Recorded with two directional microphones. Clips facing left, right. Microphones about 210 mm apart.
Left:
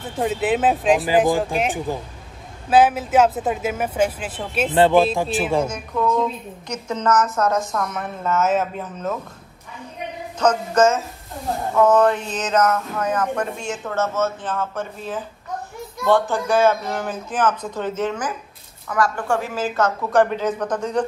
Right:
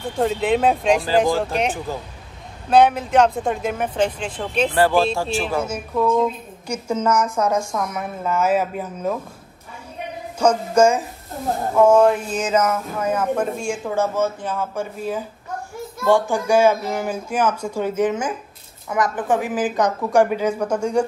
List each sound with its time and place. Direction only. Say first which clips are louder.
0.2 s speech: right 1 dB; 5° left (ahead or behind)
1.9 s speech: left 2 dB; 15° left (ahead or behind)
2.7 s speech: right 1 dB; 5° left (ahead or behind)
4.7 s speech: left 3 dB; 20° left (ahead or behind)
5.7 s a woman's voice: right 2 dB; 5° right (ahead or behind)
10.4 s a woman's voice: right 1 dB; 10° right (ahead or behind)